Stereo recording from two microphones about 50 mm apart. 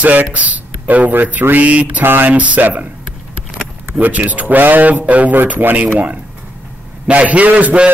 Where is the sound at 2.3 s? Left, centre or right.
Right.